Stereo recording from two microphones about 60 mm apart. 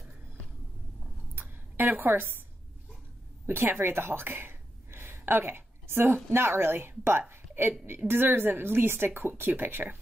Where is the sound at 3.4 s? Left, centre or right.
Right.